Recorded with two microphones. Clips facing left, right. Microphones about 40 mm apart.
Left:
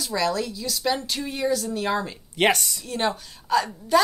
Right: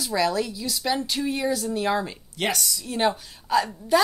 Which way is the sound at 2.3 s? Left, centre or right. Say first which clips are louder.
Left 6 dB; left.